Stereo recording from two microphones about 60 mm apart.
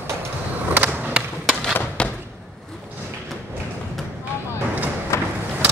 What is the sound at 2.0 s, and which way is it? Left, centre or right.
Thump, centre.